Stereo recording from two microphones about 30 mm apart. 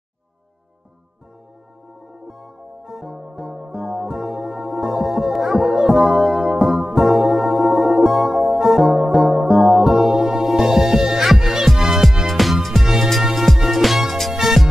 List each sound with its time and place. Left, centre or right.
2.2 s music: right
4.9 s music: centre
8.7 s music: centre
12.8 s music: centre
14.3 s music: centre